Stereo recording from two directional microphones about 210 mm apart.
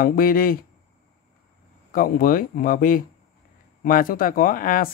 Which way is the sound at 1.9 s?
45° left (ahead or behind).